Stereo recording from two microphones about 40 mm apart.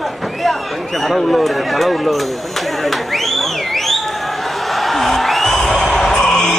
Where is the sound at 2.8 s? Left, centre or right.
Centre.